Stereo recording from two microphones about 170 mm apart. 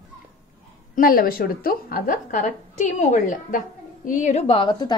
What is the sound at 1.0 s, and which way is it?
A woman's voice, 60° left (ahead or behind).